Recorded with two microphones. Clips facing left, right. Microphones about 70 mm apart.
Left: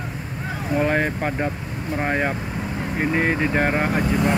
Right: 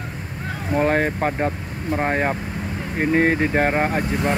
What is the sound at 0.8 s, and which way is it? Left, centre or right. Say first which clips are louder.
Speech: right 3 dB; right.